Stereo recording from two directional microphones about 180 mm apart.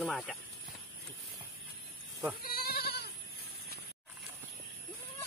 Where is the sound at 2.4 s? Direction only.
55° left (ahead or behind).